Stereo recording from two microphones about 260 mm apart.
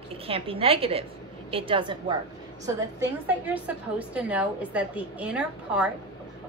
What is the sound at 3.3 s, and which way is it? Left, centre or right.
A woman's voice, centre.